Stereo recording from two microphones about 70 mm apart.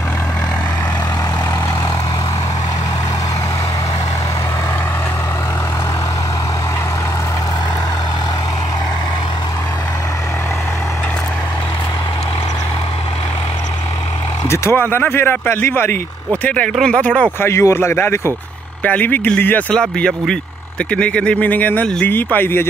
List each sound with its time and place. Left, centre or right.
14.5 s a sound: left
14.8 s speech: left
16.4 s speech: centre
17.4 s speech: left
18.9 s speech: left
19.7 s speech: centre
21.5 s speech: left